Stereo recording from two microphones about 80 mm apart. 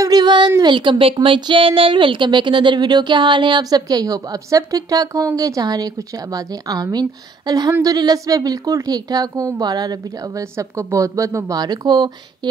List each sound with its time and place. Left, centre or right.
0.0 s a sound: right
0.6 s speech: right
9.6 s speech: right